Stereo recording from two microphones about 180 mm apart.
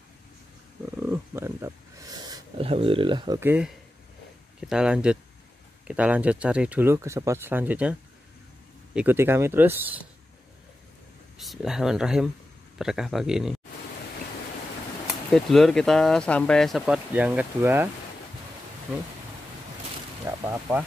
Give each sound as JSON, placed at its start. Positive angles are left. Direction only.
{"t": 0.9, "sound": "a sound", "side_deg": -10}
{"t": 3.3, "sound": "speech", "side_deg": -10}
{"t": 11.3, "sound": "speech", "side_deg": 0}
{"t": 15.3, "sound": "speech", "side_deg": 0}
{"t": 20.2, "sound": "speech", "side_deg": -15}